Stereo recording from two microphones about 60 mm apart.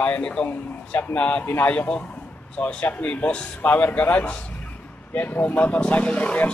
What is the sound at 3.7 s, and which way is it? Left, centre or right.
A man's voice, left.